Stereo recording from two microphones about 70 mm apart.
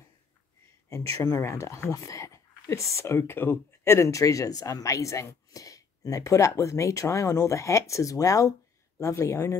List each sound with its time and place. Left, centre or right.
0.8 s speech: left